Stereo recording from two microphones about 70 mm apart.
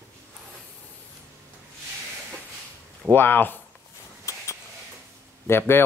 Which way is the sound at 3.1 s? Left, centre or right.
Left.